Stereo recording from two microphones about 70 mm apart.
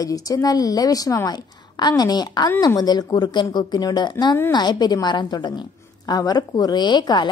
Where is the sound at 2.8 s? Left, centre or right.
Left.